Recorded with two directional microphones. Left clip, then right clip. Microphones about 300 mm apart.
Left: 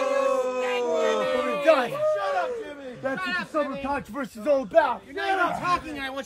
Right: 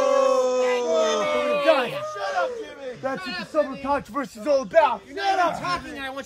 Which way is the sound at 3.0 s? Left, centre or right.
Centre.